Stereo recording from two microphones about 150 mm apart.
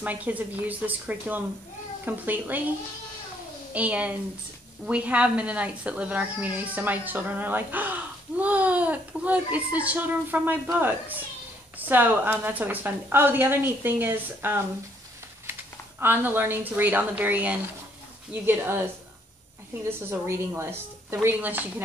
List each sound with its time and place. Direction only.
0.0 s a child's voice: 10° right (ahead or behind)
3.7 s a child's voice: 10° right (ahead or behind)
16.0 s a child's voice: 15° right (ahead or behind)
20.1 s a child's voice: 15° right (ahead or behind)